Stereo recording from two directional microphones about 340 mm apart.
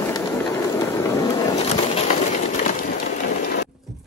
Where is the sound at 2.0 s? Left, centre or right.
Left.